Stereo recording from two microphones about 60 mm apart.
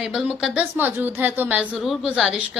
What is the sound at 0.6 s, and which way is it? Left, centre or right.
A woman's voice, right.